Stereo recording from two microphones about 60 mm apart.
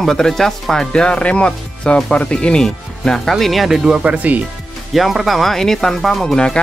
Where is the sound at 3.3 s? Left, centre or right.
Centre.